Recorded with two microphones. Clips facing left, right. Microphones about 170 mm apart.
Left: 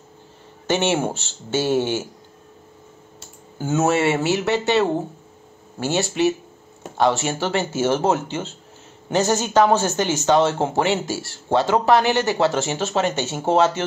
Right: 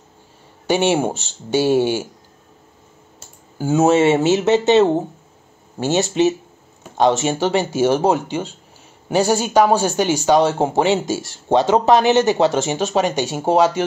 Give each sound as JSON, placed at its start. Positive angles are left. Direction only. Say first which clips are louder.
{"t": 0.7, "sound": "speech", "louder": "right 3 dB", "side_deg": -15}
{"t": 3.5, "sound": "speech", "louder": "right 5 dB", "side_deg": -10}